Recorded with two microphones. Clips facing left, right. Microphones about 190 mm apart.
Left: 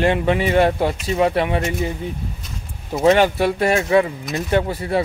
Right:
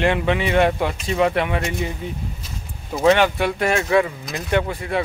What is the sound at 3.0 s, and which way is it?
Speech, 35° left (ahead or behind).